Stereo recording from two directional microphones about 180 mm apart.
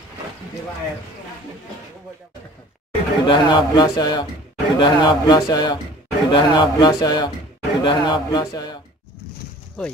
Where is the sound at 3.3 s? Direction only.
25° left (ahead or behind).